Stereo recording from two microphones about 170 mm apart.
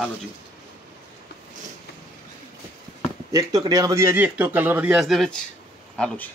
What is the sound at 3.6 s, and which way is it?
Speech, 20° right (ahead or behind).